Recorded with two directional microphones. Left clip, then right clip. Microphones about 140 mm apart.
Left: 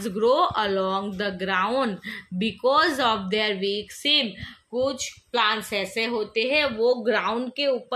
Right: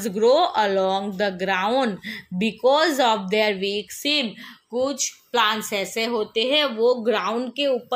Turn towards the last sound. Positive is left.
turn(degrees=-30)  # may be behind; listen again after turning